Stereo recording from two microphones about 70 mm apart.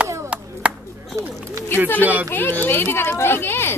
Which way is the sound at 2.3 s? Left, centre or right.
Left.